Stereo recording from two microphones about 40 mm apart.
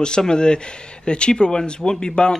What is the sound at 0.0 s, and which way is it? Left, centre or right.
Speech, centre.